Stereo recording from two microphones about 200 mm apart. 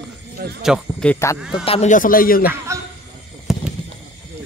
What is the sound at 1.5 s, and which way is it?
Speech, 25° left (ahead or behind).